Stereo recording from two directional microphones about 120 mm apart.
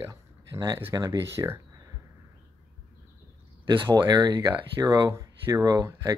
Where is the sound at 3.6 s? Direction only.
45° right (ahead or behind).